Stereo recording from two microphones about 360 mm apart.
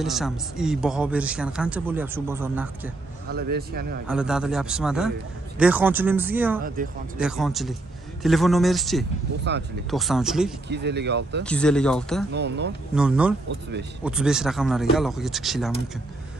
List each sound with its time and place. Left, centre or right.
0.0 s a man's voice: centre
3.3 s a man's voice: right
4.1 s a man's voice: centre
9.4 s a man's voice: right
9.8 s a man's voice: centre
10.7 s a man's voice: right
11.4 s a man's voice: centre
12.3 s a man's voice: right
12.9 s a man's voice: centre